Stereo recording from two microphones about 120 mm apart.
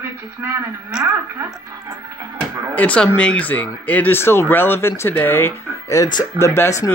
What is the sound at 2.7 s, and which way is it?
Speech, 10° left (ahead or behind).